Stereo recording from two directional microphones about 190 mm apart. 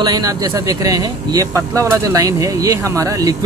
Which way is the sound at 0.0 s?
20° right (ahead or behind).